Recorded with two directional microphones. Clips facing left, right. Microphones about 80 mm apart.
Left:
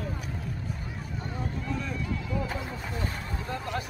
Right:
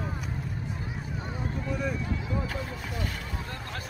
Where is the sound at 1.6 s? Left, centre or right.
Centre.